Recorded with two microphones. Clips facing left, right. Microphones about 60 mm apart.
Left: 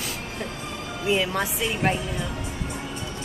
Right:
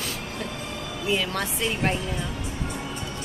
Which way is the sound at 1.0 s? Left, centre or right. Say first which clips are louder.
Left 3 dB; centre.